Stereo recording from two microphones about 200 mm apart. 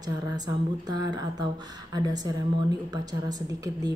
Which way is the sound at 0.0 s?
20° right (ahead or behind).